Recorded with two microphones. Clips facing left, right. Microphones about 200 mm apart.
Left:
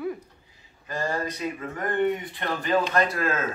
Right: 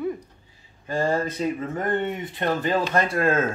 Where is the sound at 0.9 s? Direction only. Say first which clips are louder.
Right 5 dB; 30° right (ahead or behind).